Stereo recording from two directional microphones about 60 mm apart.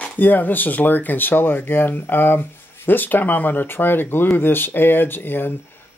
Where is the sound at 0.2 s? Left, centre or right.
Left.